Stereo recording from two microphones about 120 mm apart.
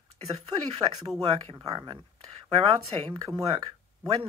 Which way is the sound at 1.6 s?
40° right (ahead or behind).